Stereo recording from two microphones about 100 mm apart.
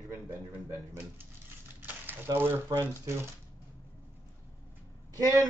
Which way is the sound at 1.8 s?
20° right (ahead or behind).